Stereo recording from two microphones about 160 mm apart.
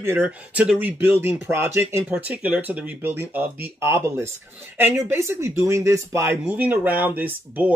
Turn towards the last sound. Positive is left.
turn(degrees=-10)  # may be behind; listen again after turning